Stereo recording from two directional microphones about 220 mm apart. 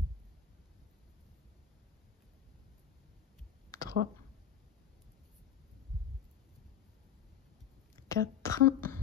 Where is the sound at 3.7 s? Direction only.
15° left (ahead or behind).